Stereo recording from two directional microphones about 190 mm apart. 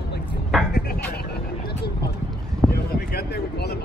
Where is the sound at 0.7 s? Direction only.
55° left (ahead or behind).